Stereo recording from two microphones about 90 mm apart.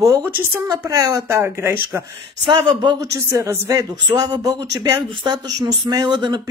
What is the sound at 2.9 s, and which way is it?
Speech, 35° right (ahead or behind).